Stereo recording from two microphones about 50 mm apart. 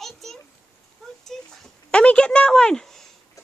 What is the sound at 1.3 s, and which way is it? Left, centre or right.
Dog, centre.